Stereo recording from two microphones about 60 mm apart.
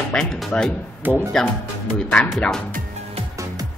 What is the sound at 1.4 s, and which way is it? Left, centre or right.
Speech, centre.